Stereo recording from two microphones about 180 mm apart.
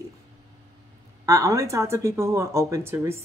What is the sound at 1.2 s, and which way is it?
Speech, 20° right (ahead or behind).